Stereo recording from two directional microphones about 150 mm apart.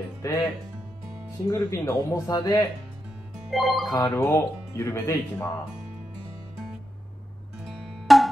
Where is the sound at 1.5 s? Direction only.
20° left (ahead or behind).